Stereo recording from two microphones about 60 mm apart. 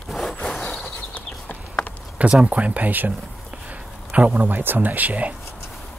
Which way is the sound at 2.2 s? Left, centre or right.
Right.